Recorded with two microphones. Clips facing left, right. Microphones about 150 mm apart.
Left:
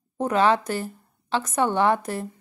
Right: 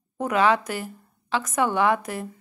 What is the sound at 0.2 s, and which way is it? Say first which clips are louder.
Speech: left 1 dB; 30° left (ahead or behind).